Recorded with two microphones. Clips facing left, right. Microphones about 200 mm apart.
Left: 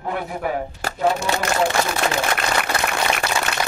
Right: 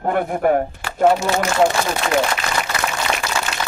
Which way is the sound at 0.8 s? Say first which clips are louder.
Left 3 dB; 40° left (ahead or behind).